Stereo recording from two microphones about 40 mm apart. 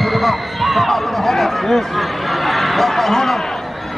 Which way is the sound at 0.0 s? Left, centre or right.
Centre.